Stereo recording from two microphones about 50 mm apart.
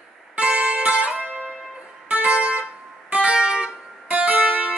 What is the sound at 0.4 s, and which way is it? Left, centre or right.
Music, right.